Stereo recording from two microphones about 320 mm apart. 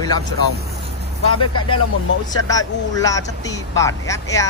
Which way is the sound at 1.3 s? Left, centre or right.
Left.